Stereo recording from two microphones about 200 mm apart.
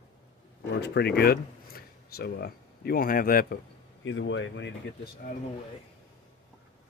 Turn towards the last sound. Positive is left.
turn(degrees=45)  # may be behind; listen again after turning